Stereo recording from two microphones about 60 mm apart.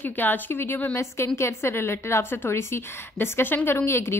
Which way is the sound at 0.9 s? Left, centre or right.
Left.